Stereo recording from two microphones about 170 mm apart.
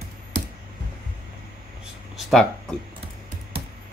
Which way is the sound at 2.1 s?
5° left (ahead or behind).